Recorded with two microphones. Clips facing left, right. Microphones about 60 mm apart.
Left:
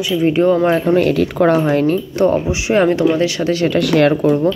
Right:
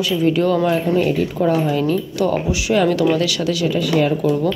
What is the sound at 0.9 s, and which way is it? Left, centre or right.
Speech, left.